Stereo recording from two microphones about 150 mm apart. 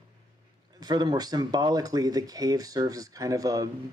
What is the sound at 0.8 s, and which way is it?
Speech, 25° right (ahead or behind).